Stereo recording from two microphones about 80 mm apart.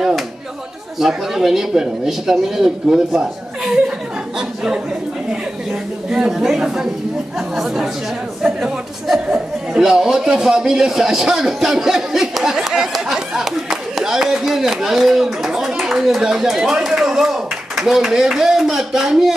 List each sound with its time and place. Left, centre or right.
0.9 s speech: centre
6.0 s speech: centre